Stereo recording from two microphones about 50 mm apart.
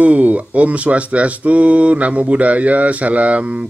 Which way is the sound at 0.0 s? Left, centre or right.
Right.